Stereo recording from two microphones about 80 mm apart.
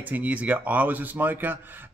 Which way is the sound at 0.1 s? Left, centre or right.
Centre.